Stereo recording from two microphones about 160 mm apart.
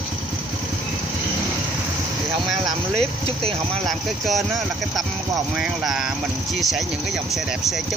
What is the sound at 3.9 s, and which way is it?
Speech, centre (ahead or behind).